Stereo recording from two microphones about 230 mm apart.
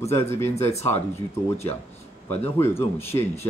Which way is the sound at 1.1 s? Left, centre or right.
Left.